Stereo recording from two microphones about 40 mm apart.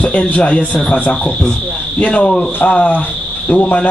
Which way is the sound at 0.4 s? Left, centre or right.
Left.